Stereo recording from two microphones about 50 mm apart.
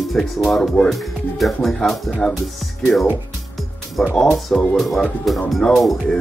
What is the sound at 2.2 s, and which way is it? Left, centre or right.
Speech, left.